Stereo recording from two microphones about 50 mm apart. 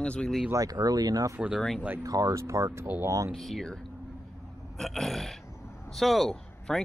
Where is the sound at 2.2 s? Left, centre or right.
Right.